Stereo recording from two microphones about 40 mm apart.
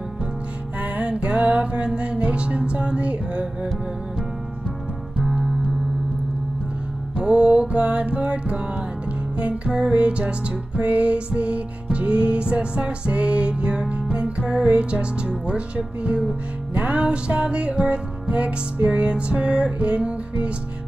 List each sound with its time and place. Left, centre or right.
0.7 s music: right
1.0 s music: right
7.2 s music: right